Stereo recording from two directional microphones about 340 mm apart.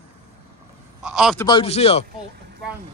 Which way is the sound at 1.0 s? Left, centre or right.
Centre.